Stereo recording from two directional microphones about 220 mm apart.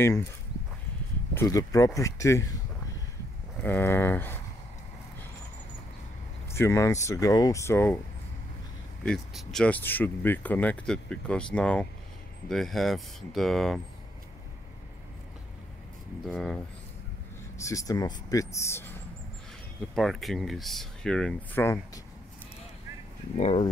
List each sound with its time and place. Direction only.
1.3 s speech: 15° left (ahead or behind)
3.6 s speech: 10° left (ahead or behind)
6.5 s speech: 10° left (ahead or behind)
9.0 s speech: centre (ahead or behind)
16.3 s speech: centre (ahead or behind)
17.6 s speech: 15° left (ahead or behind)
20.0 s speech: centre (ahead or behind)
23.3 s speech: 25° left (ahead or behind)